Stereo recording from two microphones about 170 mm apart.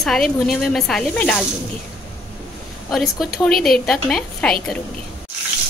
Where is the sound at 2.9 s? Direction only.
Centre (ahead or behind).